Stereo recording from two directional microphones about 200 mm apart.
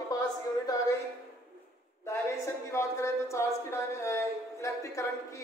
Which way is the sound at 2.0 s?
15° left (ahead or behind).